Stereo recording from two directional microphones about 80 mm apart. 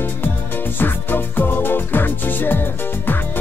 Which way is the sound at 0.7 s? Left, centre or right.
Left.